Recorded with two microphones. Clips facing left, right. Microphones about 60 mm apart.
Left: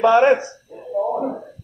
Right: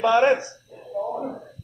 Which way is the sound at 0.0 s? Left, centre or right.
Centre.